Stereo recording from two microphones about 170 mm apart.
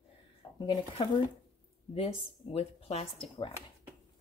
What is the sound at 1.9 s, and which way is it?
Speech, 35° left (ahead or behind).